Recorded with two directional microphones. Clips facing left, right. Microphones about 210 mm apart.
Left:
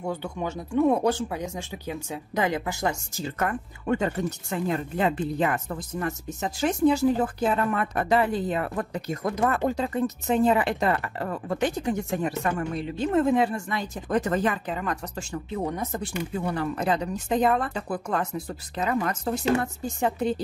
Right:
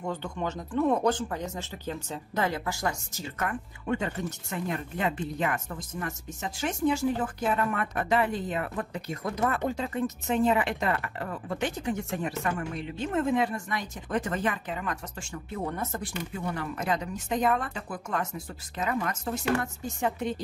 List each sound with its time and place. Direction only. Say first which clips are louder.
0.0 s speech: left 2 dB; 10° left (ahead or behind)
3.3 s speech: left 3 dB; 40° left (ahead or behind)
4.5 s speech: left 5 dB; 30° left (ahead or behind)
15.5 s speech: left 3 dB; 15° left (ahead or behind)
16.4 s speech: left 4 dB; 35° left (ahead or behind)